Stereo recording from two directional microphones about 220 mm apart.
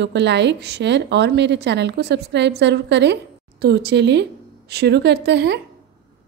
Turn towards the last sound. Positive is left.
turn(degrees=-50)  # may be behind; listen again after turning